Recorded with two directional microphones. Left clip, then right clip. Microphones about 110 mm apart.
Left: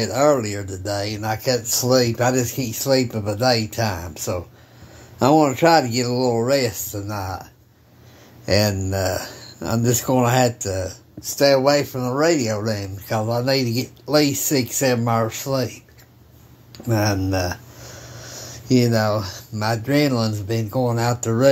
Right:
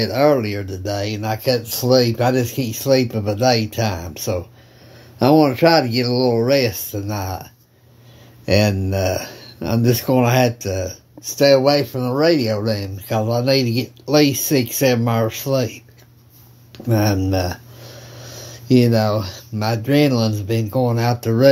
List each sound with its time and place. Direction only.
0.0 s speech: 20° right (ahead or behind); by 7.4 s 35° right (ahead or behind)
8.5 s speech: 20° right (ahead or behind)
17.3 s a sound: 15° right (ahead or behind)
19.5 s speech: 20° right (ahead or behind)